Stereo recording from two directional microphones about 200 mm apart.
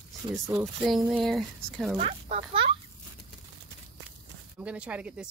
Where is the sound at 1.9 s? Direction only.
30° right (ahead or behind).